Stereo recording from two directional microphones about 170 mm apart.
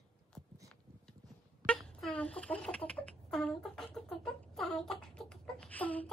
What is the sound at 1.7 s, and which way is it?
Chicken, 5° left (ahead or behind).